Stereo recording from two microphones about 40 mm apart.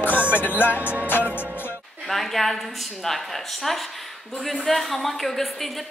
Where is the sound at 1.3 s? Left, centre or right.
Left.